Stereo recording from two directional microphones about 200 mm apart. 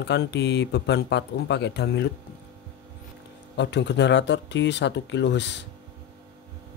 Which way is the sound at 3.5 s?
60° left (ahead or behind).